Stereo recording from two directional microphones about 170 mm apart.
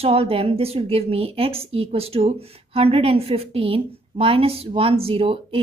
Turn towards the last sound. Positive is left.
turn(degrees=-30)  # may be behind; listen again after turning